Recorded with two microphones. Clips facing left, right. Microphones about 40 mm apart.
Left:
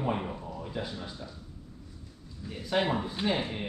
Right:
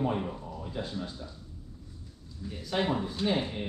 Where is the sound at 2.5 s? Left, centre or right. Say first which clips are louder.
Left 1 dB; centre.